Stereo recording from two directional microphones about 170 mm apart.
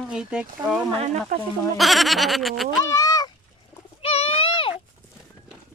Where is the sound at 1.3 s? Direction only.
55° right (ahead or behind).